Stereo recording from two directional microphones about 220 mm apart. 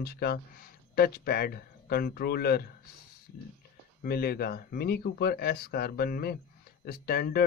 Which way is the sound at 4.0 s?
45° left (ahead or behind).